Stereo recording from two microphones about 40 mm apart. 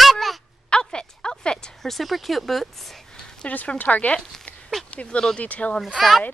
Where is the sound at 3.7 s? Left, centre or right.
Left.